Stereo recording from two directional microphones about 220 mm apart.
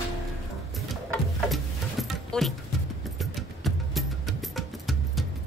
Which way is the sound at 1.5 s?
Centre (ahead or behind).